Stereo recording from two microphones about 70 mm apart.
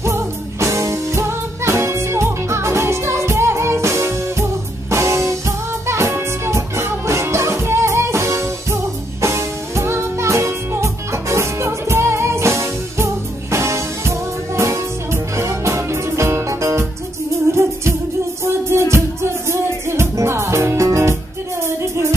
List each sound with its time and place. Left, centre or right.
0.0 s music: right
18.4 s music: right